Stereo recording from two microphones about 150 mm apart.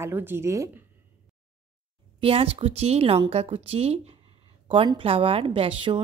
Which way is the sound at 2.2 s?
40° right (ahead or behind).